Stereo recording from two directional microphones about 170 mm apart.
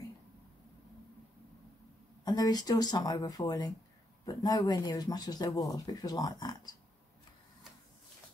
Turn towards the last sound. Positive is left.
turn(degrees=25)  # may be behind; listen again after turning